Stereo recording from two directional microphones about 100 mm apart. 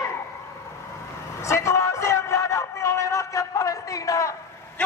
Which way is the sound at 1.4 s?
30° left (ahead or behind).